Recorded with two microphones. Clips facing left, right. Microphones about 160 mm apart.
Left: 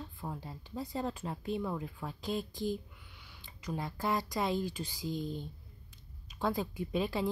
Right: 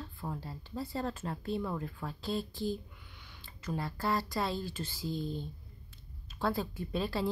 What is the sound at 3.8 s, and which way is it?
A woman's voice, 20° left (ahead or behind).